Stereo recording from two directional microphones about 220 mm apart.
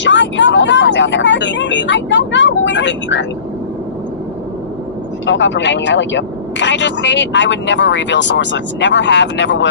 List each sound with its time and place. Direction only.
0.0 s speech: 55° left (ahead or behind)
5.2 s speech: 55° left (ahead or behind)